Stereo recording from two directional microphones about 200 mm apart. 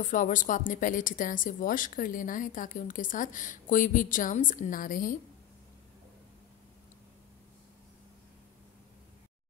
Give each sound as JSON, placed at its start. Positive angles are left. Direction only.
{"t": 0.0, "sound": "a woman's voice", "side_deg": 40}